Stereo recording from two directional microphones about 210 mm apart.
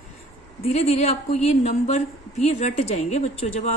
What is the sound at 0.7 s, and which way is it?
A woman's voice, 30° left (ahead or behind).